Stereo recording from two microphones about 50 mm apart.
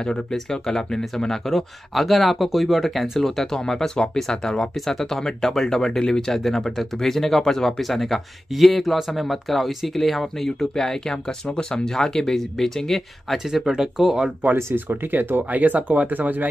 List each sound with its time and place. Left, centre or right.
0.0 s speech: centre
13.5 s speech: centre
14.9 s speech: right